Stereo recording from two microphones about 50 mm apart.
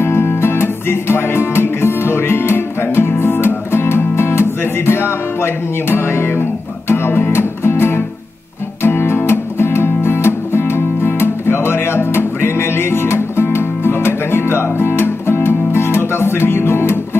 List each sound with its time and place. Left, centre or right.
0.0 s music: left